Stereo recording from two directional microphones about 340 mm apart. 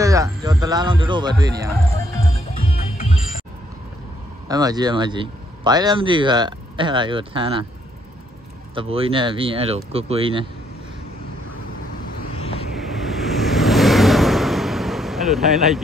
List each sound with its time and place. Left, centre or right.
0.0 s speech: centre
4.5 s speech: centre
8.7 s speech: centre
12.4 s vehicle: centre
12.7 s vehicle: centre